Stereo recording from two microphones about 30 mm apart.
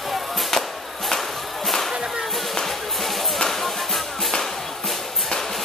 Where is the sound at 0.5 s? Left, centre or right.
Centre.